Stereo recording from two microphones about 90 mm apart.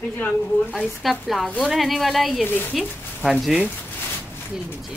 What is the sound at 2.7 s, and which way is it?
Speech, 5° right (ahead or behind).